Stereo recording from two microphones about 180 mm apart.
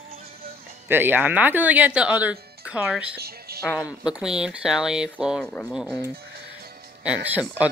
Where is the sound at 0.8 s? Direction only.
10° right (ahead or behind).